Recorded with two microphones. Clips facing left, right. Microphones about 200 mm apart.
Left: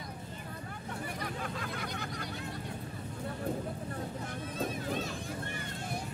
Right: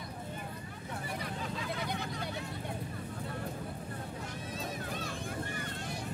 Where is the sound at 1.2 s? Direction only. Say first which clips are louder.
Even; 55° left (ahead or behind).